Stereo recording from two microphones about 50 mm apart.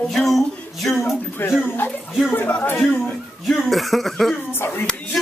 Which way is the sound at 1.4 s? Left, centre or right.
Left.